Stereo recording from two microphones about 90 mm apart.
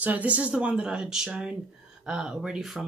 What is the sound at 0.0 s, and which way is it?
Speech, 15° right (ahead or behind).